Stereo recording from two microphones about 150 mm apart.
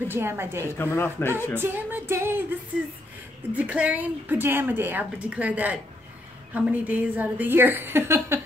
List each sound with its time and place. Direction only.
0.1 s speech: 15° right (ahead or behind)
0.7 s speech: 15° left (ahead or behind)
1.6 s speech: 15° right (ahead or behind)
3.5 s speech: 10° right (ahead or behind)